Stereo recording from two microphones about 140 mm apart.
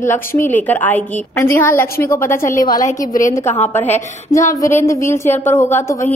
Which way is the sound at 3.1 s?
65° left (ahead or behind).